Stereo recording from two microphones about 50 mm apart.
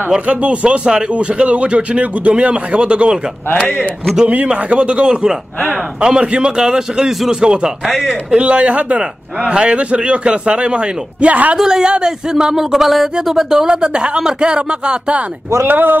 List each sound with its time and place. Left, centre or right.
0.1 s a man's voice: right
4.5 s a man's voice: right
7.8 s speech: centre
8.3 s a man's voice: right
11.5 s speech: centre
15.6 s speech: right